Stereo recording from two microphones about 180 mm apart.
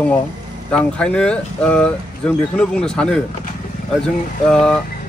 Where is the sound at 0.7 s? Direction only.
5° left (ahead or behind).